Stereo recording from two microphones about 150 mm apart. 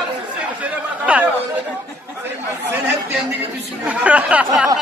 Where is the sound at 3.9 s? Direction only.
10° right (ahead or behind).